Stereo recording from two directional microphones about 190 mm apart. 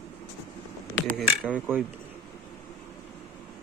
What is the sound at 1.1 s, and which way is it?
Speech, 5° right (ahead or behind).